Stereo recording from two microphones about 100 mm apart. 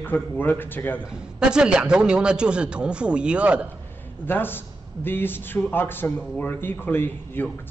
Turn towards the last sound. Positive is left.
turn(degrees=20)  # may be behind; listen again after turning